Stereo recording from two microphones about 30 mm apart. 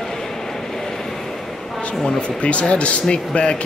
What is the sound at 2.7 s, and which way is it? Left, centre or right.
Speech, left.